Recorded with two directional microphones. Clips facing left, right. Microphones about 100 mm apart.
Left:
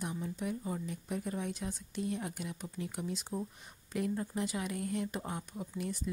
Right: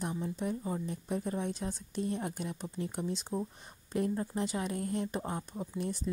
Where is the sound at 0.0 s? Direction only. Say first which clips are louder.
Right 3 dB; 30° right (ahead or behind).